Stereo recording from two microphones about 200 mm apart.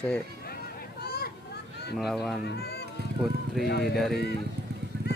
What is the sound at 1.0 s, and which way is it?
Vehicle, 50° left (ahead or behind).